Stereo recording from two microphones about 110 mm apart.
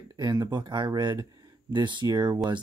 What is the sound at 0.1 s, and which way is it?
Speech, 40° right (ahead or behind).